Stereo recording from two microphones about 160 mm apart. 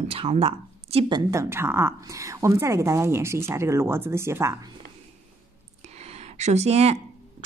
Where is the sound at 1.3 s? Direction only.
15° right (ahead or behind).